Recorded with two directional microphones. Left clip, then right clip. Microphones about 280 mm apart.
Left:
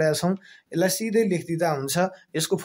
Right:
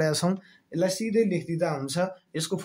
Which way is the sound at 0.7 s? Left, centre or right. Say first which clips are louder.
Left 3 dB; left.